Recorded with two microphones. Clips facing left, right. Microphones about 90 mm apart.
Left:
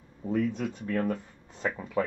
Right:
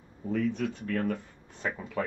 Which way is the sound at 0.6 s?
20° left (ahead or behind).